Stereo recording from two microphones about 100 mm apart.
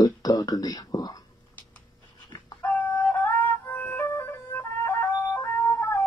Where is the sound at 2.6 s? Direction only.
15° left (ahead or behind).